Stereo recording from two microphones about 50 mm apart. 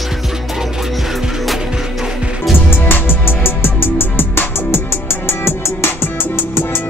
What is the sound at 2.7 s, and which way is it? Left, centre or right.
Music, left.